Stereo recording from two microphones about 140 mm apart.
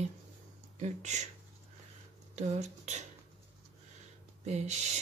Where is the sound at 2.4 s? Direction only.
55° right (ahead or behind).